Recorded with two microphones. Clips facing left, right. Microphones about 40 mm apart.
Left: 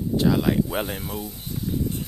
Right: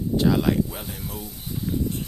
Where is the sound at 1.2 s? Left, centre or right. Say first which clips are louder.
Left 2 dB; centre.